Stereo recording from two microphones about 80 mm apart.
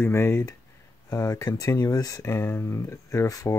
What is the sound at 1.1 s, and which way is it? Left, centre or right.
Speech, left.